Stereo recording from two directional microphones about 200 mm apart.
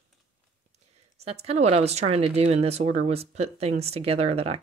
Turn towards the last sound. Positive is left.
turn(degrees=-30)  # may be behind; listen again after turning